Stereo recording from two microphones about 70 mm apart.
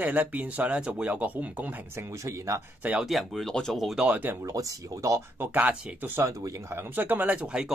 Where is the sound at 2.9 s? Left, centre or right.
Centre.